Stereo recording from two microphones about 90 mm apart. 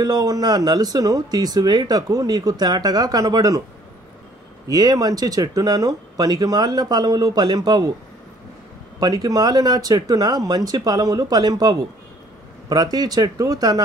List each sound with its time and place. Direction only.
0.0 s speech: 45° right (ahead or behind)
4.6 s speech: 45° right (ahead or behind)
9.0 s speech: 45° right (ahead or behind)